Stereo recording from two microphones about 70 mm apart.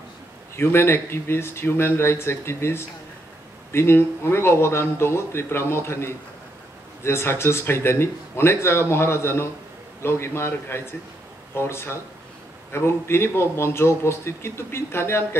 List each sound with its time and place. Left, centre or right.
0.6 s speech: left